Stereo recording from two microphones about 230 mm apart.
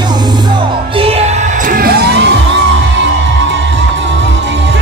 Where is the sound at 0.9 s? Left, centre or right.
Right.